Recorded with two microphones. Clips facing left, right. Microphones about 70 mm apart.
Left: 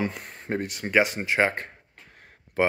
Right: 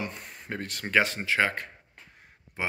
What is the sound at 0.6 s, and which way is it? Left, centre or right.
Speech, centre.